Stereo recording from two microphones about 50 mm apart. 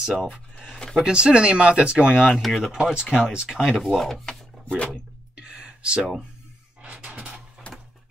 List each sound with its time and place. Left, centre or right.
0.0 s speech: centre
1.0 s speech: centre
2.4 s speech: centre
2.8 s speech: centre
3.4 s speech: centre
4.3 s a sound: centre
5.3 s a sound: centre
7.7 s music: left